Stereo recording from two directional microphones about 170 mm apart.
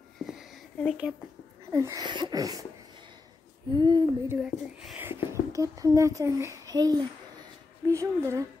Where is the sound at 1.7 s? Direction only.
20° right (ahead or behind).